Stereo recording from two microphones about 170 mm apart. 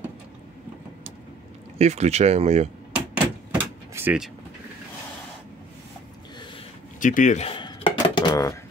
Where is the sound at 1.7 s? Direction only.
40° right (ahead or behind).